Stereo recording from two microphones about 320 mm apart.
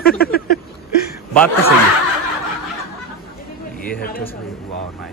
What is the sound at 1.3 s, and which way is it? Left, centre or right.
Speech, centre.